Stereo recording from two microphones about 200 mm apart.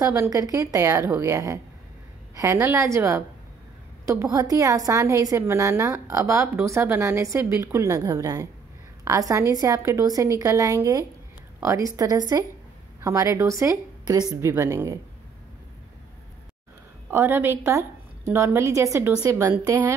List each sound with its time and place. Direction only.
0.0 s a woman's voice: 15° right (ahead or behind)
17.1 s a woman's voice: 10° right (ahead or behind)